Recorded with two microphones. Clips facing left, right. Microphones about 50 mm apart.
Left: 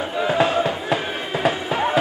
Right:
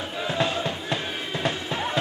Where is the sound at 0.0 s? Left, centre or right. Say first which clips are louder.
Left 7 dB; centre.